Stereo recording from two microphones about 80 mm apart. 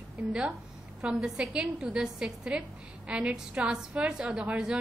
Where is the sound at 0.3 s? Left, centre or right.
Centre.